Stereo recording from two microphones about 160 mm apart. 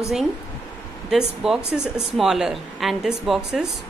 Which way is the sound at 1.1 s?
5° right (ahead or behind).